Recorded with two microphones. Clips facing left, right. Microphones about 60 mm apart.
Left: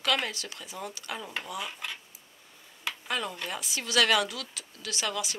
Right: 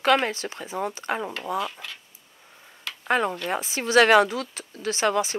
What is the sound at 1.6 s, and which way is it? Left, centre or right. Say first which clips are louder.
Speech: right 7 dB; centre.